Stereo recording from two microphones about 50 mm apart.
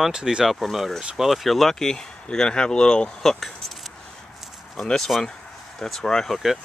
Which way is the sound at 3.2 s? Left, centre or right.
Centre.